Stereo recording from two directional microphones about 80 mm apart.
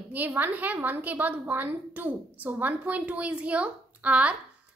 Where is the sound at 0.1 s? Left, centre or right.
Right.